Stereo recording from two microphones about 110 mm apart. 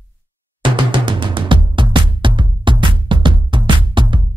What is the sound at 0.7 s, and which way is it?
Music, 50° right (ahead or behind).